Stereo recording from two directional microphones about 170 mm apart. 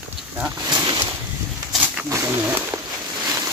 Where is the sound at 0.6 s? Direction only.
25° right (ahead or behind).